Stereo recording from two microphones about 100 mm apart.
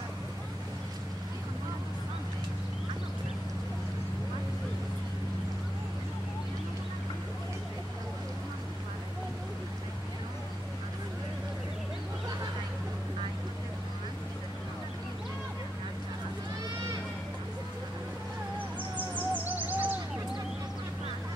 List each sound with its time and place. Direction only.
18.9 s owl: 15° right (ahead or behind)